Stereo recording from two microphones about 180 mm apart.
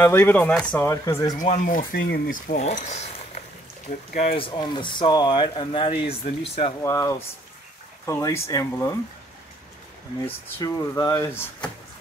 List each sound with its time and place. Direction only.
0.0 s speech: 10° left (ahead or behind)
1.4 s speech: 45° left (ahead or behind)
4.1 s speech: 45° left (ahead or behind)
4.4 s speech: 25° left (ahead or behind)
6.8 s speech: 15° left (ahead or behind)
10.6 s speech: 20° left (ahead or behind)